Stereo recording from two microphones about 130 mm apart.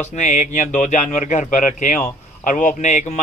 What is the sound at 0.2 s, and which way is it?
A man's voice, 70° left (ahead or behind).